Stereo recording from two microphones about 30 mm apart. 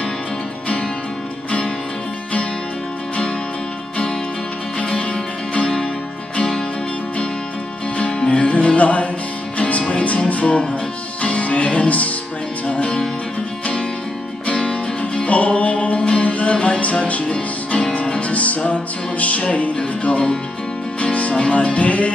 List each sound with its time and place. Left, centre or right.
4.7 s music: left
8.3 s music: left
14.5 s music: left
15.2 s music: left
16.0 s music: left
16.3 s music: left
16.5 s music: left